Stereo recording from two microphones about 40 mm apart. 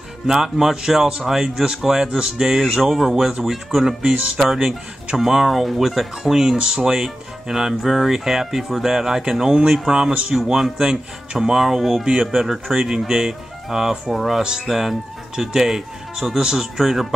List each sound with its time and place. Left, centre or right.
0.3 s speech: centre
10.3 s speech: centre
12.0 s speech: right
12.3 s speech: centre